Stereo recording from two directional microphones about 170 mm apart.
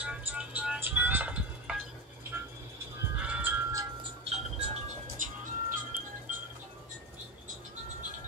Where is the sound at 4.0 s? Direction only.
35° right (ahead or behind).